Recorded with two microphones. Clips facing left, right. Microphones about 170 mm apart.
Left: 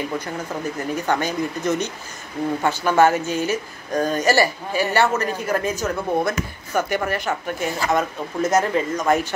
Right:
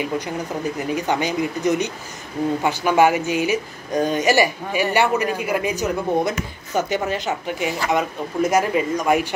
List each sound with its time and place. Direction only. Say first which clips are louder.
0.7 s a woman's voice: even; 15° right (ahead or behind)